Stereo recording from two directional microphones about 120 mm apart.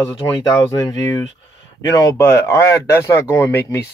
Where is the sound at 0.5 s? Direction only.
30° left (ahead or behind).